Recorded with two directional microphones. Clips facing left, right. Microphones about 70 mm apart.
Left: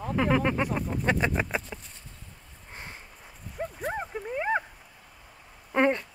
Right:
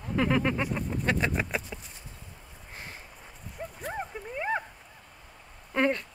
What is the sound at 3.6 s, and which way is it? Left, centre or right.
Dog, left.